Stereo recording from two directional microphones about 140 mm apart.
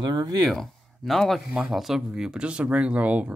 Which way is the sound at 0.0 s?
30° right (ahead or behind).